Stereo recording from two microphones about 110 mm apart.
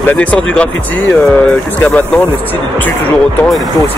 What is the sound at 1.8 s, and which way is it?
Speech, 15° left (ahead or behind).